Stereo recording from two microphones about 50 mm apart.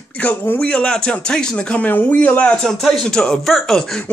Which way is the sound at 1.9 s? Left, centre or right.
Left.